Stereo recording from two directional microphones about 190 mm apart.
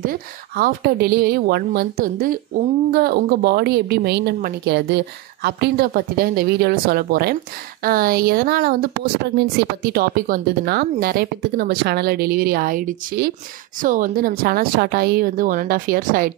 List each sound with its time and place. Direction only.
0.0 s a woman's voice: 50° right (ahead or behind)